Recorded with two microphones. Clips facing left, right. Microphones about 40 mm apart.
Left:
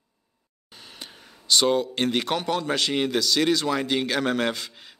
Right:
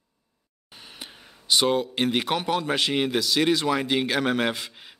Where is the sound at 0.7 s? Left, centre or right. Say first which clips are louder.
Even; centre.